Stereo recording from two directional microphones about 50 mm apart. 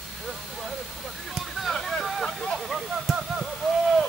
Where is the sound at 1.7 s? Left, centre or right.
Centre.